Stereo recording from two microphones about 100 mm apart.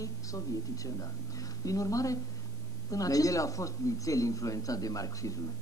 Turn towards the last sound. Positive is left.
turn(degrees=35)  # may be behind; listen again after turning